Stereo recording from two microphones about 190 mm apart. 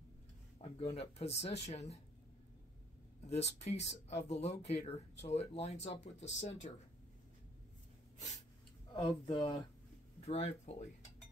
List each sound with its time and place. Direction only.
0.6 s speech: 30° left (ahead or behind)
3.3 s speech: 35° left (ahead or behind)
9.1 s speech: 20° left (ahead or behind)
10.2 s speech: 35° left (ahead or behind)